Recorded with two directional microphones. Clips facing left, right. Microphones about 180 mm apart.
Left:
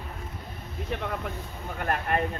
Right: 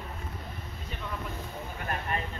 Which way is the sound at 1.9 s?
60° left (ahead or behind).